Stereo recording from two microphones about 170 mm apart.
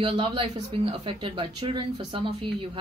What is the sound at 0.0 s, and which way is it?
Speech, 30° right (ahead or behind).